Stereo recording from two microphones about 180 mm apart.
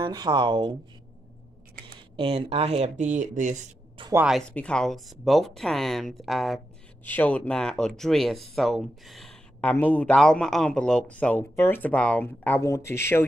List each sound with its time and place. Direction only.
0.0 s speech: 25° right (ahead or behind)
2.1 s speech: 30° right (ahead or behind)
4.3 s speech: 5° left (ahead or behind)